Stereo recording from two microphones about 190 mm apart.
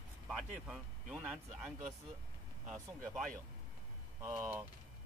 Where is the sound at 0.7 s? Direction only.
5° right (ahead or behind).